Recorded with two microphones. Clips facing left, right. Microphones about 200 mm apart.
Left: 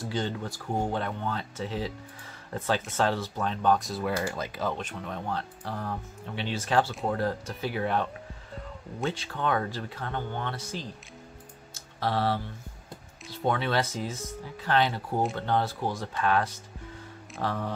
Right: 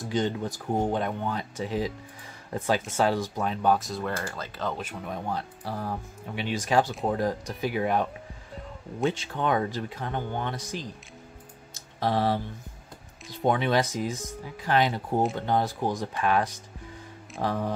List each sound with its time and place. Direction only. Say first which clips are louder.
0.0 s speech: right 4 dB; 20° right (ahead or behind); by 4.1 s centre (ahead or behind)
4.2 s speech: left 2 dB; 15° left (ahead or behind)
4.7 s speech: right 1 dB; 5° right (ahead or behind)
11.7 s music: right 3 dB; 15° right (ahead or behind)
13.3 s speech: right 3 dB; 15° right (ahead or behind)